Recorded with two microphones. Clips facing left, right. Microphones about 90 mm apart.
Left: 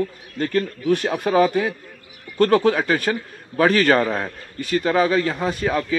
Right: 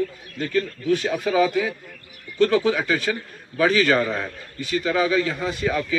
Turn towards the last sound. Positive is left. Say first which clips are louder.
# left 2 dB
turn(degrees=45)  # may be behind; listen again after turning